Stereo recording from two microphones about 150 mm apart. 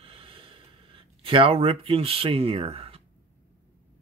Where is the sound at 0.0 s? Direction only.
40° right (ahead or behind).